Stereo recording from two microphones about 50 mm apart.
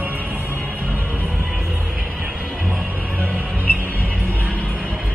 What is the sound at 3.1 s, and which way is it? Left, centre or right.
Music, right.